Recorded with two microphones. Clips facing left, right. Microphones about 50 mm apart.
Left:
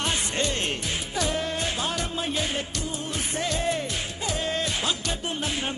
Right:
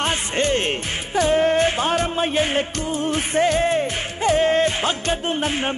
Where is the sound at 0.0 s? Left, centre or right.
Right.